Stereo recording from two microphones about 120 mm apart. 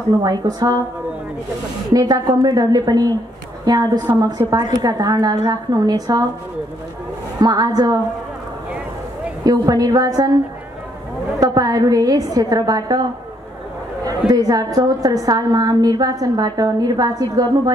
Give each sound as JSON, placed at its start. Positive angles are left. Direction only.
{"t": 0.2, "sound": "a woman's voice", "side_deg": -30}
{"t": 2.0, "sound": "a woman's voice", "side_deg": -35}
{"t": 7.3, "sound": "a woman's voice", "side_deg": -30}
{"t": 9.4, "sound": "a woman's voice", "side_deg": -30}
{"t": 14.0, "sound": "a woman's voice", "side_deg": -30}